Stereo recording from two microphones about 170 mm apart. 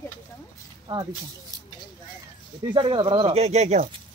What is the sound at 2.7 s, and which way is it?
Speech, 30° right (ahead or behind).